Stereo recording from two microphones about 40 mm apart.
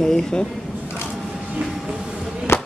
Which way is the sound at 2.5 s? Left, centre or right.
Left.